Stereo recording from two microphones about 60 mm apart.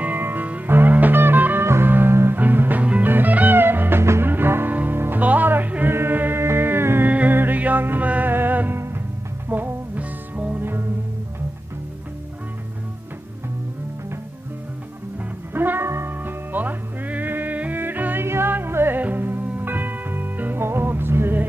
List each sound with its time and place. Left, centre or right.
0.0 s music: right
4.0 s music: right
4.3 s music: right
7.1 s music: right
8.7 s music: right
9.5 s music: right
10.6 s music: right
15.1 s music: right